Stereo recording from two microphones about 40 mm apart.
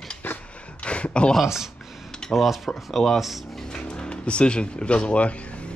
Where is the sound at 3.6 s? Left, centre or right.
Left.